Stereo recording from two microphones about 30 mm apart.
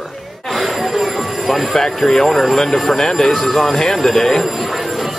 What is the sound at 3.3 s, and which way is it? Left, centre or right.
Speech, centre.